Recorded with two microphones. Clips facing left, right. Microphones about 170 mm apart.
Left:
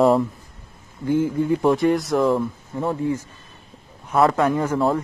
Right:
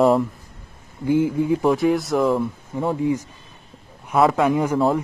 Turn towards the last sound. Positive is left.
turn(degrees=-5)  # may be behind; listen again after turning